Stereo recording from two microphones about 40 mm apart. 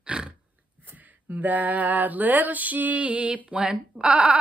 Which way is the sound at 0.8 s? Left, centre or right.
Right.